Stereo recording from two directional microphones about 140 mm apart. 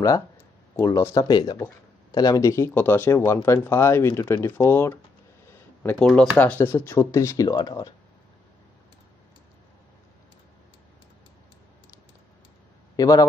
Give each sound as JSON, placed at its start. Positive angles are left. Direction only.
{"t": 0.7, "sound": "speech", "side_deg": 20}
{"t": 5.8, "sound": "a sound", "side_deg": 10}
{"t": 6.0, "sound": "speech", "side_deg": 10}
{"t": 12.9, "sound": "a man's voice", "side_deg": 25}